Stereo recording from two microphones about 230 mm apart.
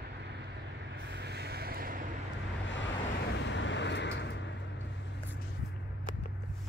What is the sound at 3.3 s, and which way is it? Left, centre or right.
Vehicle, left.